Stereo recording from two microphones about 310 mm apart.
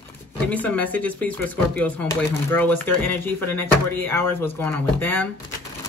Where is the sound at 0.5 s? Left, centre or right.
Centre.